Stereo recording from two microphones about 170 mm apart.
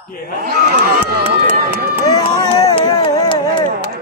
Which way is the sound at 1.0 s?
65° right (ahead or behind).